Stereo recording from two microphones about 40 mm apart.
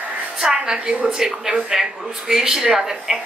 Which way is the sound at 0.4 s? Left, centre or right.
Centre.